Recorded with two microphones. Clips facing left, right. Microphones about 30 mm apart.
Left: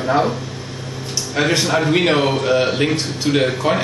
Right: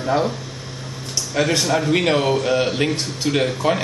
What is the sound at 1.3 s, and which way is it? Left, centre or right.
Speech, centre.